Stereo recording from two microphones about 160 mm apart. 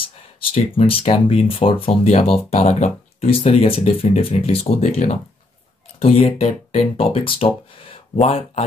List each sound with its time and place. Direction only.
0.0 s speech: 35° left (ahead or behind)